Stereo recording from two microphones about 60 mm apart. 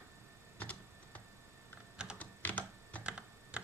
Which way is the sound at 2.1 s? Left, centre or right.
Left.